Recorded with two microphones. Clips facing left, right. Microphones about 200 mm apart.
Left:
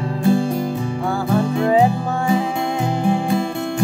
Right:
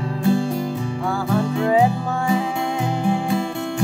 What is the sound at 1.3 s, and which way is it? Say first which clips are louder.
Music: left 2 dB; 40° left (ahead or behind).